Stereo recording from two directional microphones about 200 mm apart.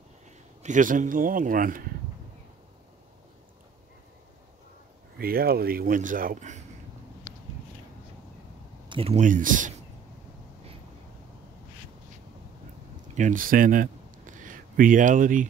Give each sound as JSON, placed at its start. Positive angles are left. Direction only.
{"t": 0.6, "sound": "speech", "side_deg": -40}
{"t": 5.2, "sound": "speech", "side_deg": -50}
{"t": 8.8, "sound": "speech", "side_deg": -25}
{"t": 13.1, "sound": "speech", "side_deg": -40}